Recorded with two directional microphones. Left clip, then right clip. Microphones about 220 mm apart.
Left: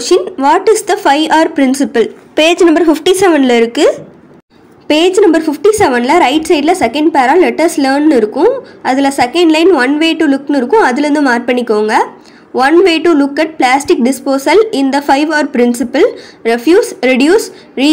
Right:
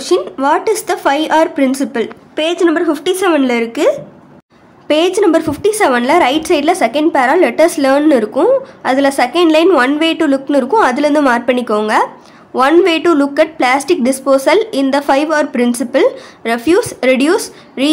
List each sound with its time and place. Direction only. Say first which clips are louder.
0.0 s a woman's voice: left 4 dB; 5° left (ahead or behind)